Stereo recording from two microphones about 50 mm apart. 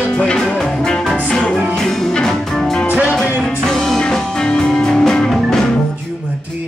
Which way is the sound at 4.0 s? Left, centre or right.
Centre.